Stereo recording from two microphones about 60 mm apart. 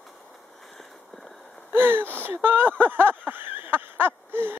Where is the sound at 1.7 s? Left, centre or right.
Right.